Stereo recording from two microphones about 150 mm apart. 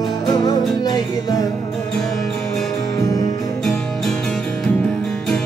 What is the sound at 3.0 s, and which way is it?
Music, 25° left (ahead or behind).